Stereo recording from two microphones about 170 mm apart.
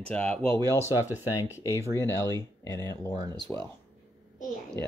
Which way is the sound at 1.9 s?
15° left (ahead or behind).